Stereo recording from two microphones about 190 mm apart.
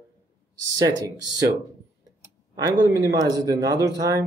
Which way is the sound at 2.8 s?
20° right (ahead or behind).